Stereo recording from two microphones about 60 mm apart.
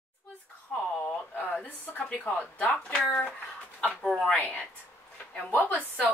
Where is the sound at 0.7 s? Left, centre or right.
Centre.